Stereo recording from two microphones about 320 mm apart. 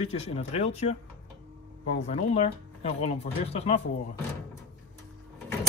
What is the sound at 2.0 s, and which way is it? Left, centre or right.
Speech, left.